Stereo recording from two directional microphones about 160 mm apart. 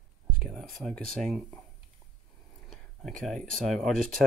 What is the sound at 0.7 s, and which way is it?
Speech, 5° left (ahead or behind).